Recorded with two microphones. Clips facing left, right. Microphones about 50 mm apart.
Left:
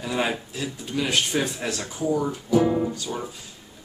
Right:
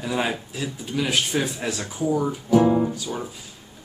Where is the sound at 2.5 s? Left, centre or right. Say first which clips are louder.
Right 3 dB; right.